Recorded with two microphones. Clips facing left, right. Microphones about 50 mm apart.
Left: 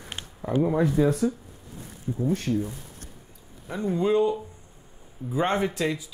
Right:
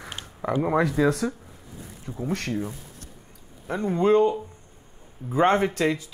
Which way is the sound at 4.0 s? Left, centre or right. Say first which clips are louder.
Right 3 dB; right.